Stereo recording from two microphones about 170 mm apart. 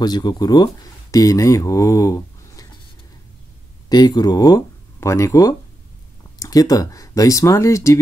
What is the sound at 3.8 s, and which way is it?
Speech, 25° left (ahead or behind).